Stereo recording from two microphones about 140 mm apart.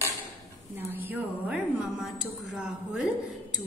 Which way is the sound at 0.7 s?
15° right (ahead or behind).